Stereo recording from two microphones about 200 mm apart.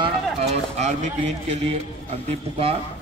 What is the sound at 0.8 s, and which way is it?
Speech, 35° right (ahead or behind).